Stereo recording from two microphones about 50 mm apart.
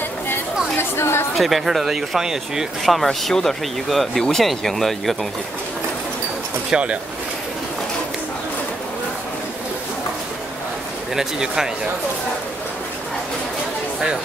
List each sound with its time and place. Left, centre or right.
0.3 s chatter: left
1.3 s speech: centre
2.8 s speech: centre
6.7 s speech: right
11.1 s speech: centre